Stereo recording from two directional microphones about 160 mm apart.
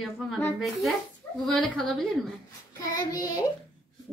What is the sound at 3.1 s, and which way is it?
Speech, 25° left (ahead or behind).